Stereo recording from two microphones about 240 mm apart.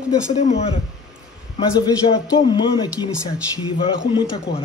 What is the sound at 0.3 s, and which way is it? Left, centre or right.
Speech, left.